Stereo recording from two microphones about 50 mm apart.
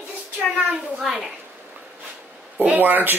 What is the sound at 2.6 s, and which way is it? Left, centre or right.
Speech, right.